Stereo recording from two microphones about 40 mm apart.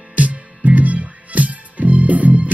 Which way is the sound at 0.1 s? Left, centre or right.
Right.